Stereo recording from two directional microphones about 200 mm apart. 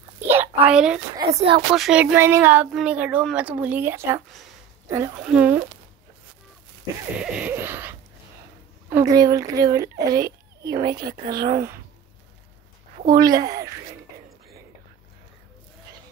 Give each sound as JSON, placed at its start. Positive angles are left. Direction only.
{"t": 0.3, "sound": "a sound", "side_deg": -10}
{"t": 1.7, "sound": "speech", "side_deg": -5}
{"t": 7.2, "sound": "laughter", "side_deg": -5}
{"t": 8.9, "sound": "speech", "side_deg": -15}
{"t": 11.2, "sound": "speech", "side_deg": -50}
{"t": 11.5, "sound": "speech", "side_deg": -15}
{"t": 13.1, "sound": "speech", "side_deg": -20}